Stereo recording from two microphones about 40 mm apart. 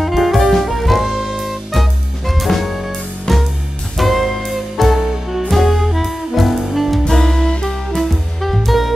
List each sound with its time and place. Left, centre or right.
0.0 s saxophone: centre
3.9 s music: centre
7.1 s music: centre